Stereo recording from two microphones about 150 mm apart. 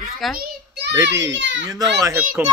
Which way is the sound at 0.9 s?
20° right (ahead or behind).